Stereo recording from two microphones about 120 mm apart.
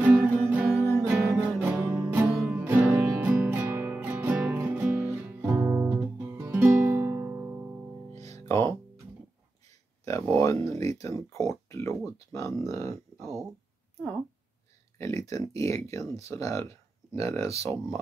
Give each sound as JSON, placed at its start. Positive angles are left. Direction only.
{"t": 0.0, "sound": "music", "side_deg": -10}
{"t": 8.1, "sound": "music", "side_deg": -65}
{"t": 8.5, "sound": "music", "side_deg": 25}
{"t": 10.4, "sound": "a sound", "side_deg": 25}
{"t": 15.0, "sound": "speech", "side_deg": 25}